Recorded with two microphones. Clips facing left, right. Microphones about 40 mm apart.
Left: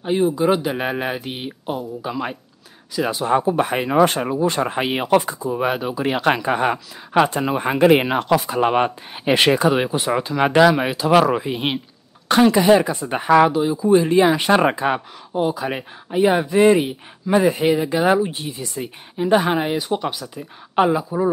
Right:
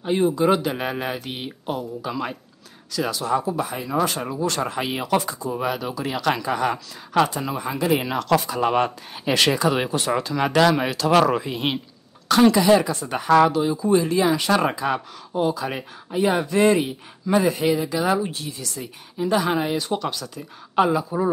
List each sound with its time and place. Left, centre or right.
0.0 s speech: centre
0.7 s speech: left
4.2 s speech: left
6.0 s speech: left
8.5 s speech: left
9.7 s speech: centre
12.3 s speech: left
13.3 s speech: centre
13.9 s speech: left
15.3 s speech: centre; by 18.2 s left
18.2 s speech: centre
21.0 s speech: centre